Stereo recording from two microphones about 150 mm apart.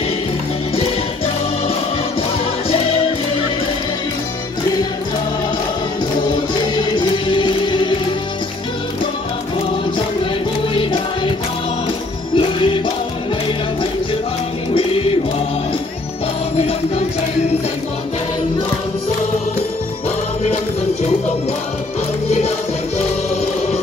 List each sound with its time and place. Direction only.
6.7 s music: 30° left (ahead or behind)
10.7 s music: 35° left (ahead or behind)
12.4 s music: 35° left (ahead or behind)
14.7 s music: 35° left (ahead or behind)